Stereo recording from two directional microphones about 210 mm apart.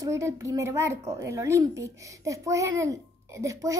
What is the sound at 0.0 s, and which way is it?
A woman's voice, 15° right (ahead or behind).